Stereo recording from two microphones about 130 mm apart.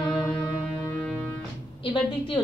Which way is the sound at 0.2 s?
30° left (ahead or behind).